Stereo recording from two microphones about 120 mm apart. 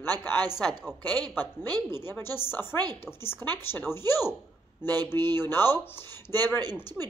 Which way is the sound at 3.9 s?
20° left (ahead or behind).